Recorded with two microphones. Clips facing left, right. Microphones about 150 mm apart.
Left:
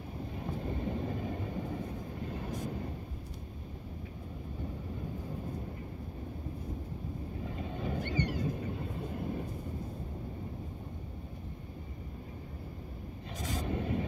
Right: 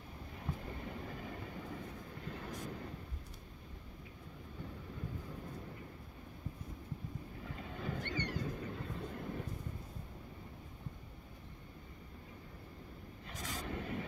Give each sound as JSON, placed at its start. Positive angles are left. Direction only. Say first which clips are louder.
{"t": 0.4, "sound": "vehicle", "louder": "left 7 dB", "side_deg": 25}
{"t": 7.4, "sound": "boat", "louder": "left 5 dB", "side_deg": 25}
{"t": 8.0, "sound": "a sound", "louder": "left 7 dB", "side_deg": 10}
{"t": 8.5, "sound": "vehicle", "louder": "left 5 dB", "side_deg": 20}
{"t": 13.4, "sound": "vehicle", "louder": "left 7 dB", "side_deg": 25}